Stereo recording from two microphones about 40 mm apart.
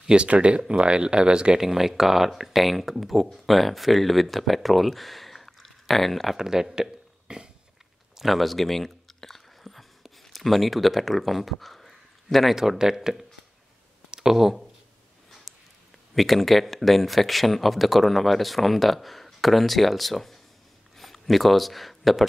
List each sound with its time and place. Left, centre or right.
0.0 s speech: right
1.6 s speech: centre
6.3 s speech: centre
8.2 s a sound: centre
12.5 s speech: centre
15.5 s a sound: centre
16.2 s speech: centre